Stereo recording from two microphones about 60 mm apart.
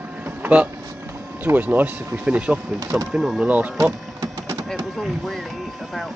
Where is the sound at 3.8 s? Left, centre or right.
Right.